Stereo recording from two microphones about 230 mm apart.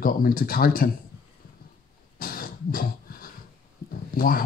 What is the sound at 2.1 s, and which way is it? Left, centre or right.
Cough, left.